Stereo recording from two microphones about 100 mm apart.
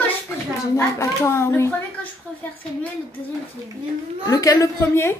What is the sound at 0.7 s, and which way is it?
Speech, 25° left (ahead or behind).